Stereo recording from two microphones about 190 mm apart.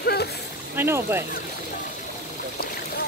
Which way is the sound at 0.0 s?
55° left (ahead or behind).